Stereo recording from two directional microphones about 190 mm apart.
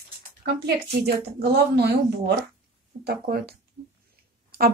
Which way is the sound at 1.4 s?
60° right (ahead or behind).